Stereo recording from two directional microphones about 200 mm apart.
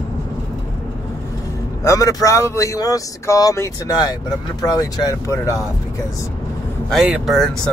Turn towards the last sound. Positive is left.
turn(degrees=0)  # may be behind; listen again after turning